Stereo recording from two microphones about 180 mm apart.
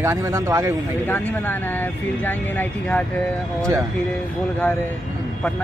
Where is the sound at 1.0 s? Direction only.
10° left (ahead or behind).